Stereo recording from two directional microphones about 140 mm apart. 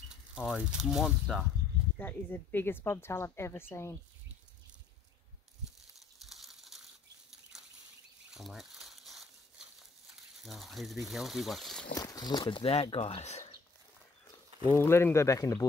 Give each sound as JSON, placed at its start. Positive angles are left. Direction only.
{"t": 0.5, "sound": "speech", "side_deg": -5}
{"t": 2.0, "sound": "speech", "side_deg": 15}
{"t": 6.2, "sound": "bird flight", "side_deg": 0}
{"t": 8.3, "sound": "crumpling", "side_deg": 0}
{"t": 10.4, "sound": "speech", "side_deg": 0}
{"t": 11.9, "sound": "speech", "side_deg": 25}
{"t": 14.8, "sound": "speech", "side_deg": 15}